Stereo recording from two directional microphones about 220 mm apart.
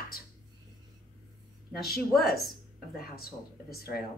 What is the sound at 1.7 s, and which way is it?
A woman's voice, 45° left (ahead or behind).